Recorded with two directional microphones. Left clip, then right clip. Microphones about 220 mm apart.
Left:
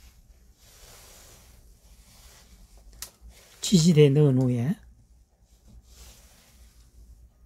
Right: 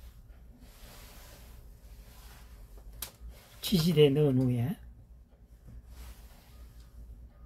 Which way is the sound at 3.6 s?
50° left (ahead or behind).